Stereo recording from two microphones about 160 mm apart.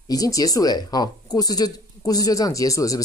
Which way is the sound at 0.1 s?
25° left (ahead or behind).